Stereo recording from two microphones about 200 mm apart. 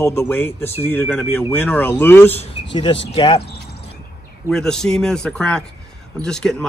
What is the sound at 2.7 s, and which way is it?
Speech, 25° left (ahead or behind).